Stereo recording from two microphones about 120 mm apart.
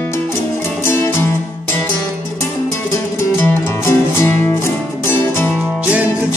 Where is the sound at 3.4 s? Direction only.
20° left (ahead or behind).